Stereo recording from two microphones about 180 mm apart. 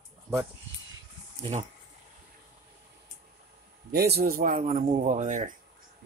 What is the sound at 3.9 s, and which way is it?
A man's voice, 60° right (ahead or behind).